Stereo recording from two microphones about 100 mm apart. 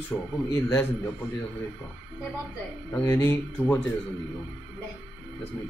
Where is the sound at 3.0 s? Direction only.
25° left (ahead or behind).